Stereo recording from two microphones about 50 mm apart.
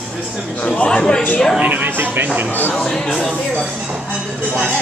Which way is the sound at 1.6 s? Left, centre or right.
Right.